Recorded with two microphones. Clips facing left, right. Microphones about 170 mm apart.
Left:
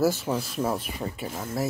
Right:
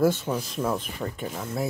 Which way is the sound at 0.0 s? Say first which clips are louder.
Right 1 dB; 5° left (ahead or behind).